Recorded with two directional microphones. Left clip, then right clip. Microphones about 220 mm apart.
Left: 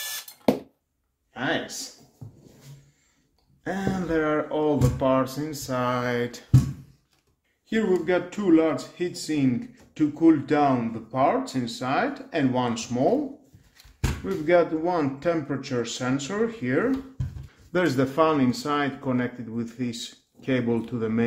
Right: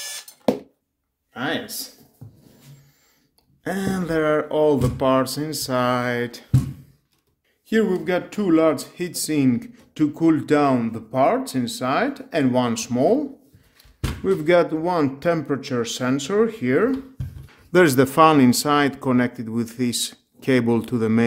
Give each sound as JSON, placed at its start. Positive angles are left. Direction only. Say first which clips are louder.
{"t": 1.3, "sound": "speech", "louder": "right 1 dB", "side_deg": -55}
{"t": 3.6, "sound": "speech", "louder": "right 3 dB", "side_deg": -50}
{"t": 7.6, "sound": "speech", "louder": "right 3 dB", "side_deg": -55}
{"t": 14.2, "sound": "speech", "louder": "right 4 dB", "side_deg": -55}